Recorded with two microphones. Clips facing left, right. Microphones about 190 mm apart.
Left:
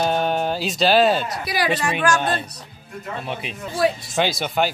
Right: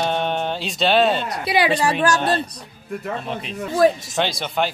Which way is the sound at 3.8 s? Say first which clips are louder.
Right 4 dB; 45° right (ahead or behind).